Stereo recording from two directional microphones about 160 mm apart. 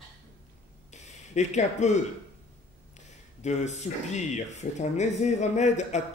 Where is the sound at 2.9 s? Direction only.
45° left (ahead or behind).